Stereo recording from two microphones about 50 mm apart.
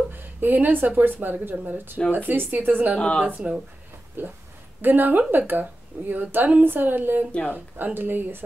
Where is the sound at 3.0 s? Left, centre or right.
Left.